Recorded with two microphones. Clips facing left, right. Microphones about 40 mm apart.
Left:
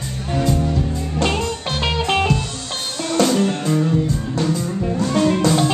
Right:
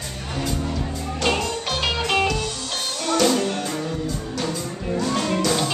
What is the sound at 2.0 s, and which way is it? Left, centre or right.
Music, left.